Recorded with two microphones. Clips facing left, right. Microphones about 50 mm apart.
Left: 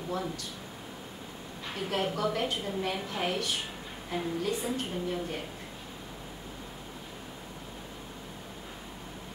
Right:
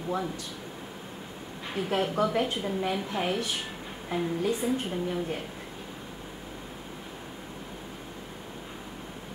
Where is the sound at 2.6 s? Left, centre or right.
Centre.